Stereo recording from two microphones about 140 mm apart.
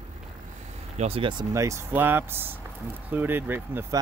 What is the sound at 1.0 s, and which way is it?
Speech, 45° right (ahead or behind).